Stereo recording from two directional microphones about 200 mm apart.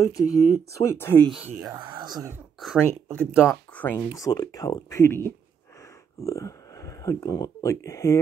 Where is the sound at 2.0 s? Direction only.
20° right (ahead or behind).